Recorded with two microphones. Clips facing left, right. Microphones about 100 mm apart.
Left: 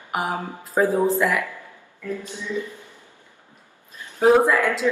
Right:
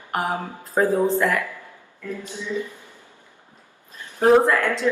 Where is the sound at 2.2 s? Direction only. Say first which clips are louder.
Right 4 dB; 20° right (ahead or behind).